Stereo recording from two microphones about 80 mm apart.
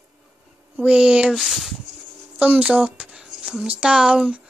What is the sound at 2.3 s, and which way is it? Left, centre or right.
Speech, centre.